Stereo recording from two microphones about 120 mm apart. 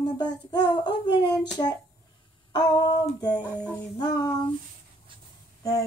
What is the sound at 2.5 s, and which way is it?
Speech, 35° left (ahead or behind).